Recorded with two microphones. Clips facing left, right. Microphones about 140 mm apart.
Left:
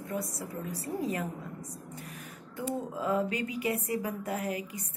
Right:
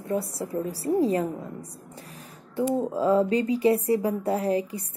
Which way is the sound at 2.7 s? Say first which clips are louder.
Right 8 dB; 35° right (ahead or behind).